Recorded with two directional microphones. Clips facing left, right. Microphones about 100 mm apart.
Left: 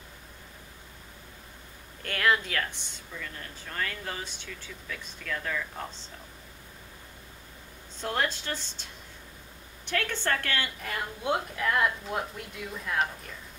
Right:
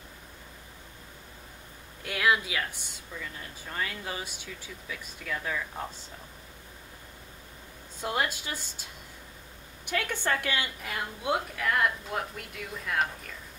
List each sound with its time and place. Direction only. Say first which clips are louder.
2.0 s speech: even; 5° right (ahead or behind)
8.0 s speech: even; 10° right (ahead or behind)
9.8 s a woman's voice: even; 15° right (ahead or behind)